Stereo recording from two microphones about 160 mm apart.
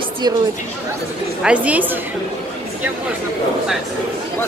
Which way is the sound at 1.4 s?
10° right (ahead or behind).